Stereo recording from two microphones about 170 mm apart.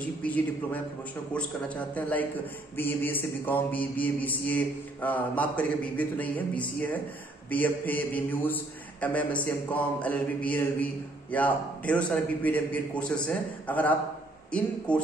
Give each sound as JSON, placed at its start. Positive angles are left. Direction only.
{"t": 0.2, "sound": "a man's voice", "side_deg": 10}